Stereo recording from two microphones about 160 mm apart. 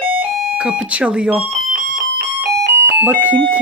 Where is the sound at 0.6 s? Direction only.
5° right (ahead or behind).